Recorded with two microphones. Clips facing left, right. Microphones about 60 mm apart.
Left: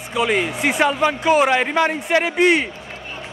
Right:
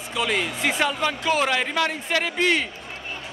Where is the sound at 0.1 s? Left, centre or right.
Centre.